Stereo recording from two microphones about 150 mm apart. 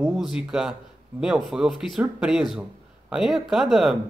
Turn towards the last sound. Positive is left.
turn(degrees=0)  # may be behind; listen again after turning